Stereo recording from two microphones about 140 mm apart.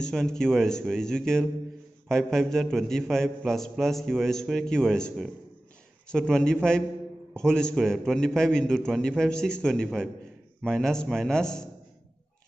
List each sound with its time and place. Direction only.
0.0 s a man's voice: 5° left (ahead or behind)